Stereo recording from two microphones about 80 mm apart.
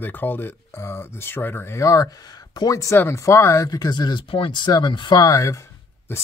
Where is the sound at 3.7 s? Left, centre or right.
Left.